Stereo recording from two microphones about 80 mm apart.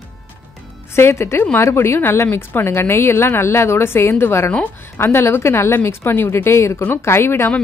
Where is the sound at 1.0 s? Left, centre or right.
Left.